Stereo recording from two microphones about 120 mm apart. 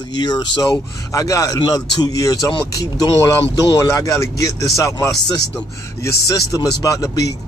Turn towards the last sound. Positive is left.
turn(degrees=30)  # may be behind; listen again after turning